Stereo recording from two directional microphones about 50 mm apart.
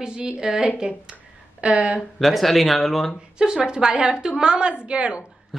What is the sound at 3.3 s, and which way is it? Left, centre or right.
A woman's voice, centre.